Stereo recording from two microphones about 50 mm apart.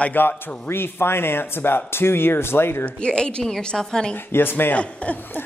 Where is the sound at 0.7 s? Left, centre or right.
Left.